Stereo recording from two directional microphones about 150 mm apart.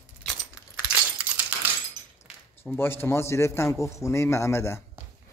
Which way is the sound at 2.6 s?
15° left (ahead or behind).